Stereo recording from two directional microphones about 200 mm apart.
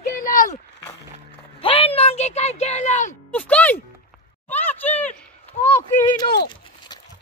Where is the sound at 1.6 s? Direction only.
25° left (ahead or behind).